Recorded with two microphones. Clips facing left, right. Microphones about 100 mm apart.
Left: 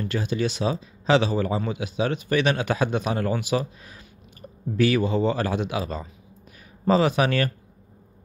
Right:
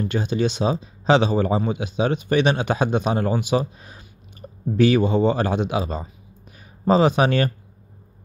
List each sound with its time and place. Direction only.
0.0 s speech: 25° right (ahead or behind)